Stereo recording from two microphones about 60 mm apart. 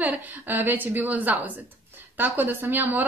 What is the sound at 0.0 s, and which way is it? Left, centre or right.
A woman's voice, right.